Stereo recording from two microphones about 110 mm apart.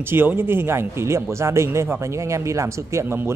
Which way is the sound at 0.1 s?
20° right (ahead or behind).